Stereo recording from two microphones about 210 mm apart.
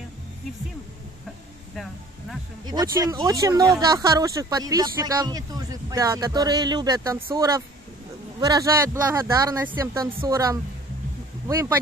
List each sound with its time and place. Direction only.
2.6 s speech: 20° right (ahead or behind)